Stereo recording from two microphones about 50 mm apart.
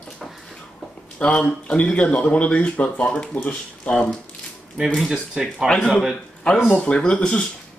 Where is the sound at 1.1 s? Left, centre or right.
Left.